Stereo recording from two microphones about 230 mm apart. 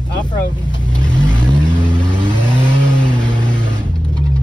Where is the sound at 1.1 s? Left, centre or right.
Centre.